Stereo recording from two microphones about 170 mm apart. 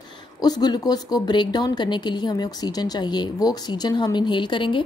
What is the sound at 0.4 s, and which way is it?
Speech, 25° left (ahead or behind).